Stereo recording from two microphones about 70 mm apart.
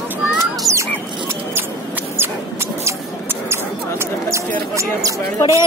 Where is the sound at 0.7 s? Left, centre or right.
Centre.